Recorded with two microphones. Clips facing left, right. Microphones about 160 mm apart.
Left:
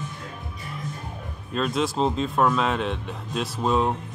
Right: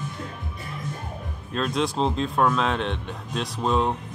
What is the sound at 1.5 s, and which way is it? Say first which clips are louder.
Speech: left 1 dB; centre (ahead or behind).